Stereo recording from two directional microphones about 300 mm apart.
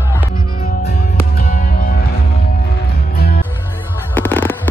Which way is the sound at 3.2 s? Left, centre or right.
Left.